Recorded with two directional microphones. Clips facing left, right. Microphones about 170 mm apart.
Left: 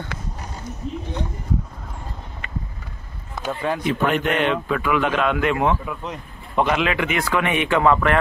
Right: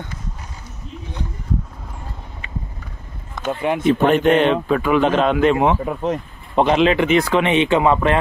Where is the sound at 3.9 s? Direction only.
30° right (ahead or behind).